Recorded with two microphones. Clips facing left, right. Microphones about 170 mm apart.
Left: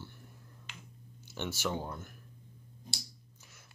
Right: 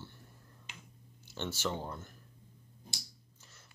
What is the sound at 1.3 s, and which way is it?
Speech, 15° left (ahead or behind).